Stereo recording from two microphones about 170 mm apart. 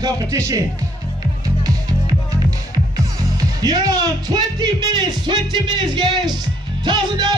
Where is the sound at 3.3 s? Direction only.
25° right (ahead or behind).